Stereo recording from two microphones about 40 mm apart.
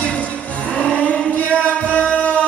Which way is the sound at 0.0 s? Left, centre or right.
Left.